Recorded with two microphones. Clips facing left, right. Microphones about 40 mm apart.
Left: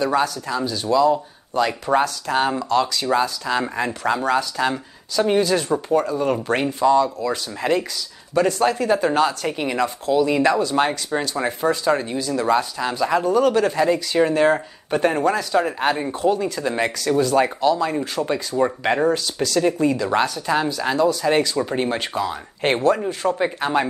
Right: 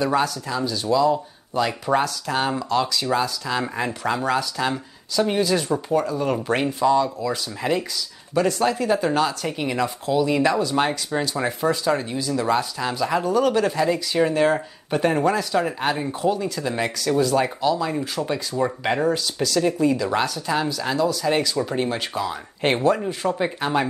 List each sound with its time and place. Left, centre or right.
0.2 s speech: centre
13.1 s speech: centre
13.5 s speech: centre
22.8 s speech: centre
23.0 s speech: centre